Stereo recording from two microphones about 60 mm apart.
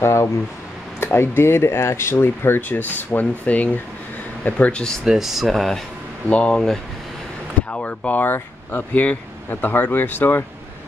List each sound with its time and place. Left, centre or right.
0.0 s speech: left
1.0 s speech: left
5.0 s speech: centre
5.5 s speech: centre
6.2 s speech: centre
7.7 s speech: left